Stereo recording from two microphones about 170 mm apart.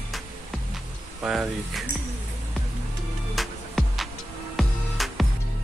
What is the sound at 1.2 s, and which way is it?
Music, 5° right (ahead or behind).